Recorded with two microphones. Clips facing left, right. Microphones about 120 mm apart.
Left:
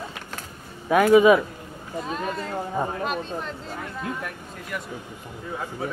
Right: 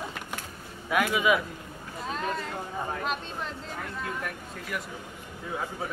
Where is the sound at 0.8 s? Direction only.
40° left (ahead or behind).